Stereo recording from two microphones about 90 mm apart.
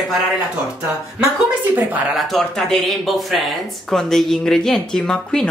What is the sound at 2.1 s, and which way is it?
Speech, centre (ahead or behind).